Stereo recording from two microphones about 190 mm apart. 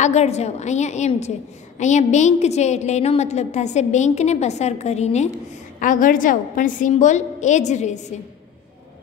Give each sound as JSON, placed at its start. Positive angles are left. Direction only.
{"t": 0.0, "sound": "a woman's voice", "side_deg": 35}